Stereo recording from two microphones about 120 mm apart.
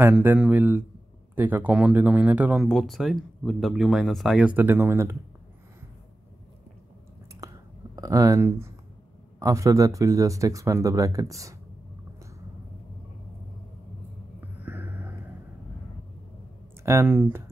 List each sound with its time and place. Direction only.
0.5 s a man's voice: 15° right (ahead or behind)
2.6 s speech: centre (ahead or behind); by 5.1 s 20° right (ahead or behind)
7.3 s clicking: 30° right (ahead or behind)
9.4 s speech: 25° right (ahead or behind)
14.6 s a sound: 15° right (ahead or behind)
16.8 s speech: 20° right (ahead or behind)